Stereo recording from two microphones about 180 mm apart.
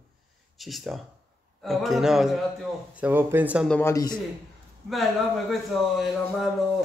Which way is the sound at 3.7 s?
15° left (ahead or behind).